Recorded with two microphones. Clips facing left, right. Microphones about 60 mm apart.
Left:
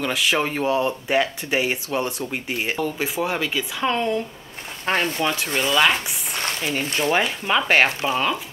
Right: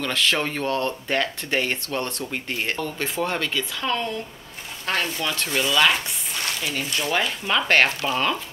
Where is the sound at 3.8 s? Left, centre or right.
Left.